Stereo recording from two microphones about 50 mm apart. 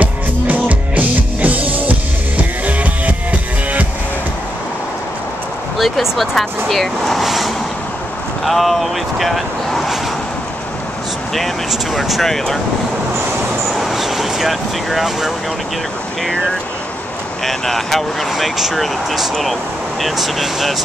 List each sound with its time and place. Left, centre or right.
0.0 s music: right
5.8 s speech: centre
11.3 s speech: centre
13.7 s vehicle: centre
17.5 s speech: centre